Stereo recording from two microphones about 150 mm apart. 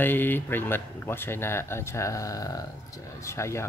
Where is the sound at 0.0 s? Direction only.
15° left (ahead or behind).